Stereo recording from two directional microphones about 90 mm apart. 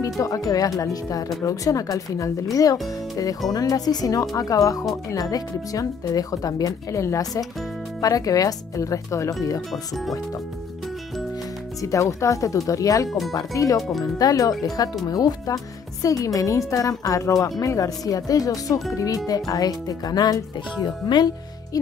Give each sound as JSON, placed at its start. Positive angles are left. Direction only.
{"t": 0.0, "sound": "a woman's voice", "side_deg": 40}
{"t": 11.8, "sound": "a woman's voice", "side_deg": 35}
{"t": 20.7, "sound": "speech", "side_deg": 55}